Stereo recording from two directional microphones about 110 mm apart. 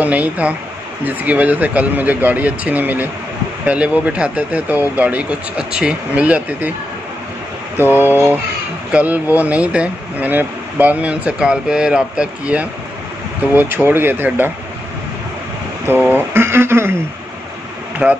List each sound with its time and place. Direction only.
0.0 s speech: 10° right (ahead or behind)
7.7 s speech: 20° right (ahead or behind)
16.1 s speech: 20° right (ahead or behind)
18.0 s speech: 15° right (ahead or behind)